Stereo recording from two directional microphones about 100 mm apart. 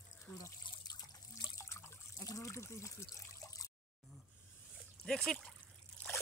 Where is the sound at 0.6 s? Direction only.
40° left (ahead or behind).